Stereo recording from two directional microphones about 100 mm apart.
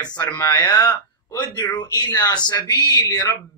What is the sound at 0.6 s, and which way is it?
Speech, 40° left (ahead or behind).